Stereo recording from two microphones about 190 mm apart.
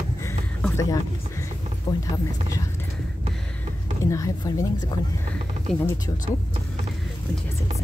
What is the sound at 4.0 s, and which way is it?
Speech, 15° left (ahead or behind).